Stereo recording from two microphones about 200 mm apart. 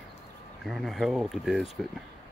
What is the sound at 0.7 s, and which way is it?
Speech, centre (ahead or behind).